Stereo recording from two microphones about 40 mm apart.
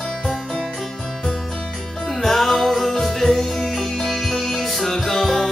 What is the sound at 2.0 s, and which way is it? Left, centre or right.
Music, centre.